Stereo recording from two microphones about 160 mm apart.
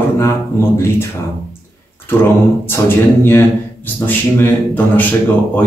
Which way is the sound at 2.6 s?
15° left (ahead or behind).